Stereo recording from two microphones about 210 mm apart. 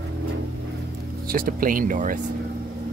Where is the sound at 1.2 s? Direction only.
40° right (ahead or behind).